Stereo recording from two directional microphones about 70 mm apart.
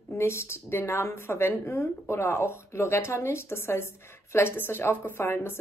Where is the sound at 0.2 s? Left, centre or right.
Left.